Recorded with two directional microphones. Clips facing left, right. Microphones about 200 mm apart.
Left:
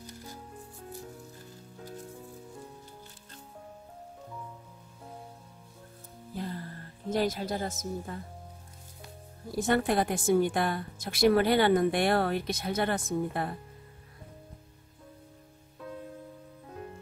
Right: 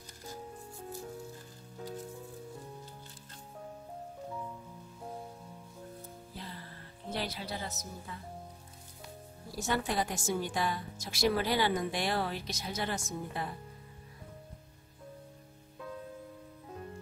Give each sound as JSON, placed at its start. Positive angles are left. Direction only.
{"t": 6.3, "sound": "music", "side_deg": 50}
{"t": 7.1, "sound": "speech", "side_deg": 45}
{"t": 9.6, "sound": "a woman's voice", "side_deg": 55}